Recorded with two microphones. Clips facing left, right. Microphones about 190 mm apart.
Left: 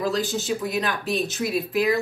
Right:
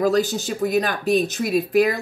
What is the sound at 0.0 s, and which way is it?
A woman's voice, 40° right (ahead or behind).